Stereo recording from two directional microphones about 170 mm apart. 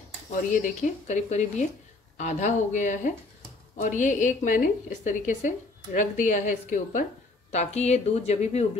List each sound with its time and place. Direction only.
0.3 s a woman's voice: 50° left (ahead or behind)